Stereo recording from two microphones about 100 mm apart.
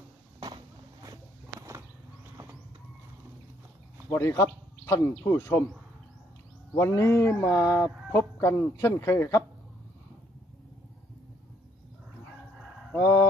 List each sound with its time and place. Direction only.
0.4 s vehicle: 50° right (ahead or behind)
4.1 s speech: 30° left (ahead or behind)
6.7 s speech: 25° left (ahead or behind)
12.9 s a sound: 20° left (ahead or behind)